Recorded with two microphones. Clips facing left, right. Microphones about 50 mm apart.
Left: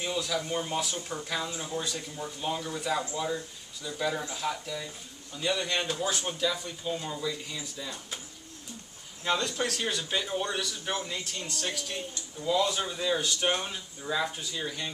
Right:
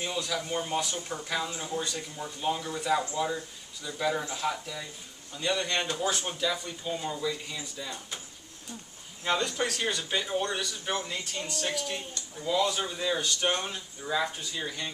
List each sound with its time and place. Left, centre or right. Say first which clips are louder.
0.0 s speech: left 1 dB; centre
9.2 s speech: right 1 dB; centre